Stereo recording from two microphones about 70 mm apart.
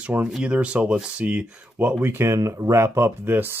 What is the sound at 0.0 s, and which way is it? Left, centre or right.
Speech, right.